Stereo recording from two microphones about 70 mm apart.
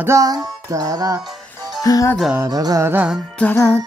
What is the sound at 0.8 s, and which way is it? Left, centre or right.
Music, right.